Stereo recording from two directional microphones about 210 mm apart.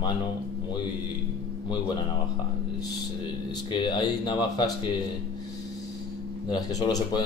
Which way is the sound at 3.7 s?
20° left (ahead or behind).